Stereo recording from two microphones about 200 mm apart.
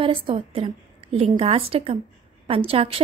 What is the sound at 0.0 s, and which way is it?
A woman's voice, 25° right (ahead or behind).